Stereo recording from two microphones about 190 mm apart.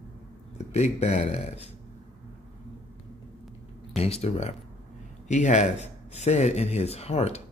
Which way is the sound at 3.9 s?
30° left (ahead or behind).